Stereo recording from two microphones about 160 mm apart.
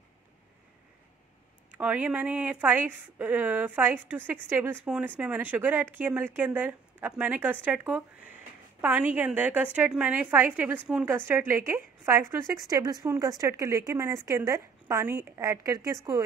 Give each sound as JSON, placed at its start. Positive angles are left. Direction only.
{"t": 1.8, "sound": "a woman's voice", "side_deg": -10}